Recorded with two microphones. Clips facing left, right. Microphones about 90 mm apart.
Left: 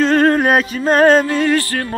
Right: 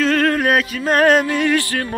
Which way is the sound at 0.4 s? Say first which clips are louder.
Left 3 dB; 35° left (ahead or behind).